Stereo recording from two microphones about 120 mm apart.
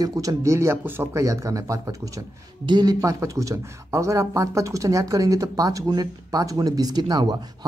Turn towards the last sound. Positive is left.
turn(degrees=-35)  # may be behind; listen again after turning